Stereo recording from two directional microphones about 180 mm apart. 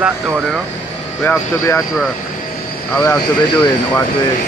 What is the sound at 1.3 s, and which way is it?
Speech, 15° left (ahead or behind).